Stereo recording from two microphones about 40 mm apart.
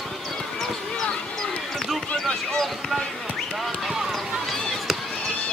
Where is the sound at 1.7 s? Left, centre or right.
Centre.